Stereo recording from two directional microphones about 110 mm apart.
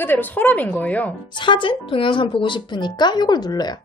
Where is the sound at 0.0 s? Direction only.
20° left (ahead or behind).